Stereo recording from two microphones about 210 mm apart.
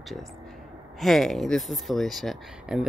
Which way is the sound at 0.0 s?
Centre (ahead or behind).